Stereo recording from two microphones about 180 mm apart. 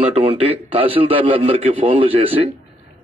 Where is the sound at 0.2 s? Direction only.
30° right (ahead or behind).